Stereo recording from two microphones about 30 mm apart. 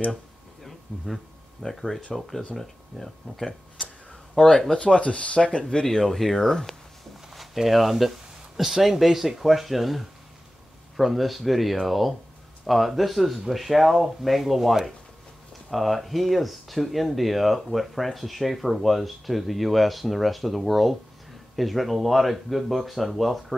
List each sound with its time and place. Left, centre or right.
0.7 s a sound: centre
2.1 s speech: centre
4.5 s speech: centre
4.7 s speech: left
5.9 s speech: centre
7.2 s speech: centre